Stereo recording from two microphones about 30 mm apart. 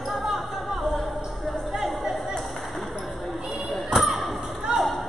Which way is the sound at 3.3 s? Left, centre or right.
Centre.